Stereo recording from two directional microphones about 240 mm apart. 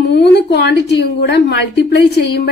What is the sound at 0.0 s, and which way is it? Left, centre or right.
A woman's voice, left.